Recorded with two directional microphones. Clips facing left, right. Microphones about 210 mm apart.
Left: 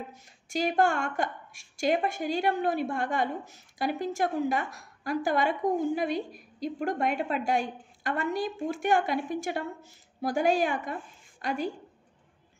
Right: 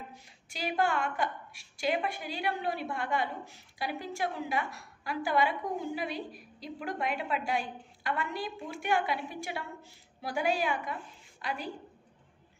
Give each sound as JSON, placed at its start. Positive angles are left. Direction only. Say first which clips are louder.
{"t": 0.1, "sound": "a woman's voice", "louder": "left 14 dB", "side_deg": 45}